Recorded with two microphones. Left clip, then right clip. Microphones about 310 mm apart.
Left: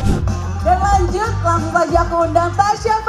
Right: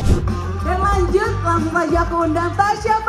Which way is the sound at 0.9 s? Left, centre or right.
Left.